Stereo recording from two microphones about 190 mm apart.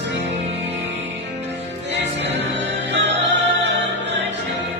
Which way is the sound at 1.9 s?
70° right (ahead or behind).